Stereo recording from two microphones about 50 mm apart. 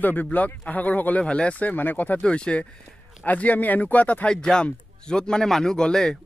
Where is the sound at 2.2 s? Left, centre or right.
Centre.